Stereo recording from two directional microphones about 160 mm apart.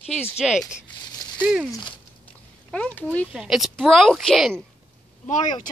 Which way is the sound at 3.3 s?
5° right (ahead or behind).